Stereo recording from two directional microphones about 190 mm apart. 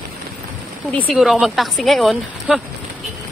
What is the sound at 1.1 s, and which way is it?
A woman's voice, centre (ahead or behind).